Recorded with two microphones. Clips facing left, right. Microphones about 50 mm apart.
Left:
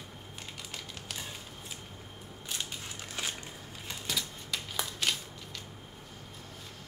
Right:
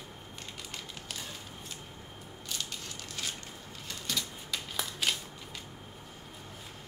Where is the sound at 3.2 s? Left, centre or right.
Left.